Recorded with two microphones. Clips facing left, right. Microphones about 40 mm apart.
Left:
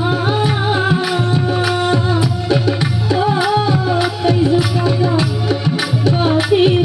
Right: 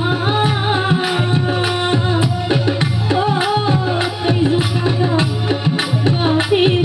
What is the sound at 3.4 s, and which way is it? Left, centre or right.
Music, right.